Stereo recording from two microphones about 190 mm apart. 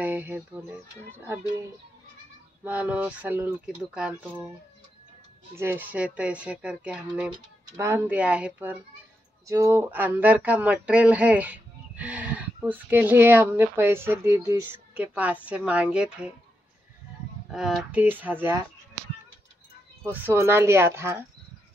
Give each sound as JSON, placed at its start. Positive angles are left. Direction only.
{"t": 0.0, "sound": "speech", "side_deg": -10}
{"t": 2.6, "sound": "speech", "side_deg": -10}
{"t": 5.6, "sound": "speech", "side_deg": -10}
{"t": 17.5, "sound": "speech", "side_deg": 0}
{"t": 20.0, "sound": "speech", "side_deg": -10}